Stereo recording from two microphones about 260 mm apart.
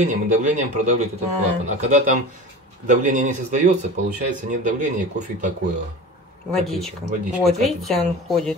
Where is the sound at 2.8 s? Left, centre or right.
Right.